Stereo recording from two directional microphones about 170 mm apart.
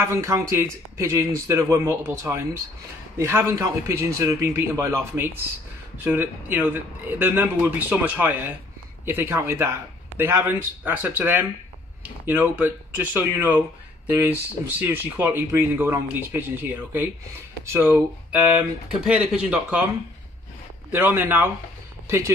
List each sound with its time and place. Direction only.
0.0 s speech: 15° right (ahead or behind)
20.9 s speech: 10° right (ahead or behind)